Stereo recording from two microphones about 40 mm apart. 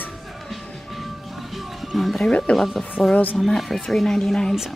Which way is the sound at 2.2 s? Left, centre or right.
Left.